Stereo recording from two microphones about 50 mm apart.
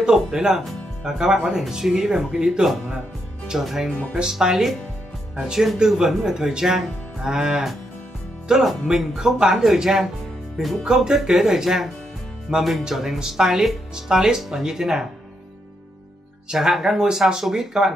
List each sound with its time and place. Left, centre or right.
0.0 s speech: centre
16.4 s speech: centre